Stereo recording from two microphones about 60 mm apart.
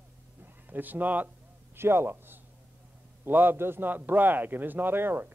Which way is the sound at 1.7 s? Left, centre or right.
Right.